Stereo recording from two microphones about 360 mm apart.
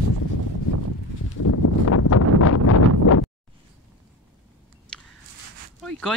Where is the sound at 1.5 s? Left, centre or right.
Left.